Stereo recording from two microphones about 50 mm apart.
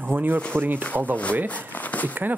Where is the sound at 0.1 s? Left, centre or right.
Right.